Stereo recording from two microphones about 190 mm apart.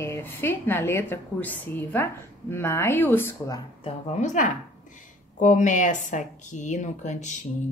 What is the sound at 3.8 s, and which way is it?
A woman's voice, 35° left (ahead or behind).